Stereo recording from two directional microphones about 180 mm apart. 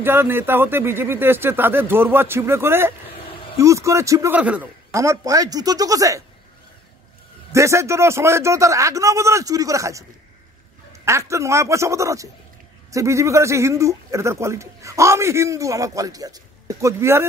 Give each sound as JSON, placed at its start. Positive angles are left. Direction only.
{"t": 0.0, "sound": "a man's voice", "side_deg": -10}
{"t": 7.5, "sound": "speech", "side_deg": -15}
{"t": 11.1, "sound": "speech", "side_deg": -15}